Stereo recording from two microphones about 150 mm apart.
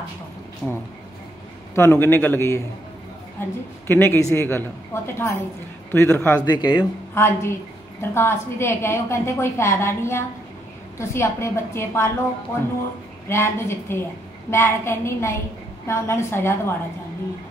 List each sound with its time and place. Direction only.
0.6 s a woman's voice: 5° left (ahead or behind)
6.4 s speech: 30° left (ahead or behind)
7.2 s a woman's voice: 15° left (ahead or behind)
13.3 s a woman's voice: 15° left (ahead or behind)